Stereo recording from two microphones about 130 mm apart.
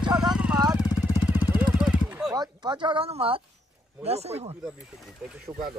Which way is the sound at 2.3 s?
30° right (ahead or behind).